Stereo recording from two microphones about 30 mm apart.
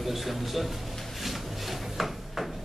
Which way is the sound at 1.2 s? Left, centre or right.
Centre.